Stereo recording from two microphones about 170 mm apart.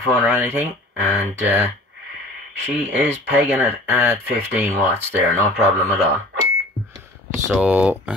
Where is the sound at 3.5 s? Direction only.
10° right (ahead or behind).